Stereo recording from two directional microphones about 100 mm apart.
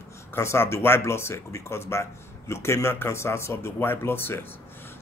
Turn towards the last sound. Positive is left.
turn(degrees=25)  # may be behind; listen again after turning